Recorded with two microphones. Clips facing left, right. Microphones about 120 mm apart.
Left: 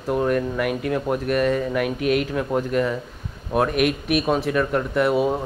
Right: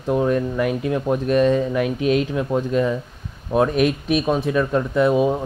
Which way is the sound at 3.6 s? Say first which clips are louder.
Right 2 dB; 30° right (ahead or behind).